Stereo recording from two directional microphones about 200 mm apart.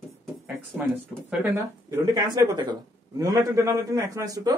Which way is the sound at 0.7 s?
Centre (ahead or behind).